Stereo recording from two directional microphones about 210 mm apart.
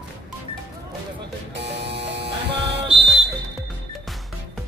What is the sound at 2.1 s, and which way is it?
Electric shaver, 55° right (ahead or behind).